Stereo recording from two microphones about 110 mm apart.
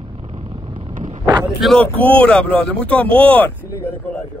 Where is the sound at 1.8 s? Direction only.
15° left (ahead or behind).